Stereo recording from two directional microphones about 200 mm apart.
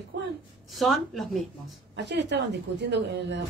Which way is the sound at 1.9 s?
60° right (ahead or behind).